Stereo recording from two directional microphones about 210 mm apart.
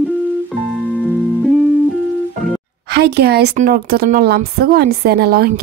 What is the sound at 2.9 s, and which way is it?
Speech, 50° right (ahead or behind).